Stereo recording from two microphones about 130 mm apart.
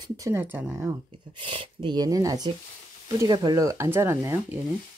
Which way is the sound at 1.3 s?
40° right (ahead or behind).